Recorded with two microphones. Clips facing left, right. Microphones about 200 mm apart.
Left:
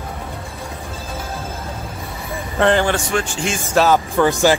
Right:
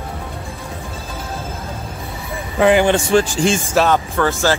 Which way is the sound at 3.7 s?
Centre (ahead or behind).